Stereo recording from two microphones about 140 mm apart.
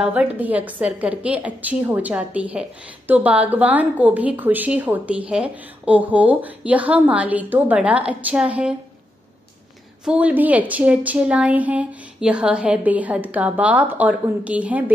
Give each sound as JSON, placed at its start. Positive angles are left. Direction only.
{"t": 0.0, "sound": "a woman's voice", "side_deg": -10}
{"t": 10.0, "sound": "a woman's voice", "side_deg": -10}